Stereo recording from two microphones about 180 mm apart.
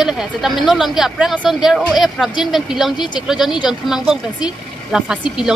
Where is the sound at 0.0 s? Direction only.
Centre (ahead or behind).